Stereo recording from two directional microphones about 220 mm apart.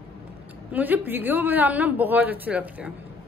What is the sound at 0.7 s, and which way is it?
Speech, 10° right (ahead or behind).